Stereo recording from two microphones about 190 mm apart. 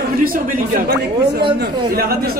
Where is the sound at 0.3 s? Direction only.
45° right (ahead or behind).